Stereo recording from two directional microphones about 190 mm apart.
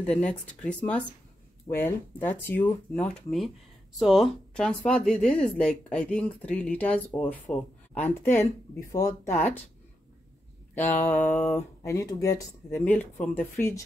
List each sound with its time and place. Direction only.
0.0 s speech: 5° left (ahead or behind)
3.0 s speech: centre (ahead or behind); by 9.3 s 20° left (ahead or behind)
10.8 s a sound: 40° left (ahead or behind)
11.1 s speech: 10° left (ahead or behind)